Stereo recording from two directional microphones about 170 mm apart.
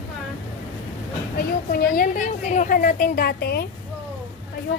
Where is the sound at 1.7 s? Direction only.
55° left (ahead or behind).